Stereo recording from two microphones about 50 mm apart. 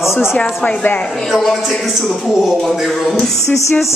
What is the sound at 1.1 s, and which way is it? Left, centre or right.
A man's voice, centre.